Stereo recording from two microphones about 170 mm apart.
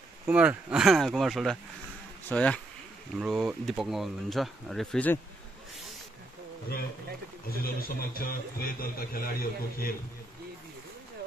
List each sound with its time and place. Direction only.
0.3 s speech: 5° right (ahead or behind)
3.2 s speech: 5° right (ahead or behind)
7.4 s a man's voice: 60° left (ahead or behind)